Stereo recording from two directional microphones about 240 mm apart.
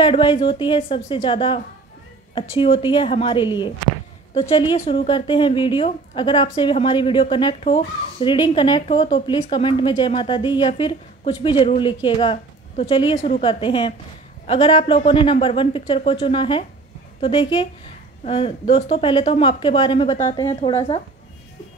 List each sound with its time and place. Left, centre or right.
0.0 s a woman's voice: centre